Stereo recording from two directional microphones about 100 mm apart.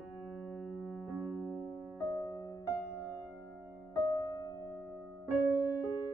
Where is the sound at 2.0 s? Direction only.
40° left (ahead or behind).